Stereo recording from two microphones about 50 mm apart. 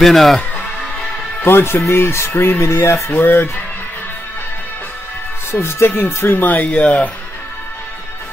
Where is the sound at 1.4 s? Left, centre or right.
Left.